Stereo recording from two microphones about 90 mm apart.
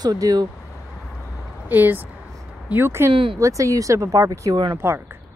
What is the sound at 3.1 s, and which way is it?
Speech, 75° right (ahead or behind).